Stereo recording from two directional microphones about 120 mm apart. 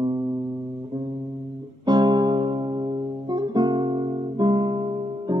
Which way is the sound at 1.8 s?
35° right (ahead or behind).